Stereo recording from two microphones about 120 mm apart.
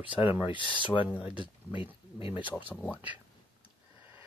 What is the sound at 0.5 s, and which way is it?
Speech, 45° left (ahead or behind).